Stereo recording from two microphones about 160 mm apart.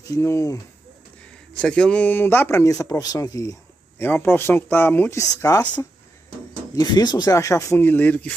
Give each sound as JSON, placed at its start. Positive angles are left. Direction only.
{"t": 0.1, "sound": "speech", "side_deg": 20}
{"t": 1.5, "sound": "a man's voice", "side_deg": 5}
{"t": 6.7, "sound": "a man's voice", "side_deg": 25}